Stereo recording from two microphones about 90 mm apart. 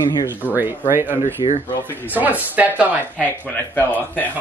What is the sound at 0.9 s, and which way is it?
A woman's voice, 25° right (ahead or behind).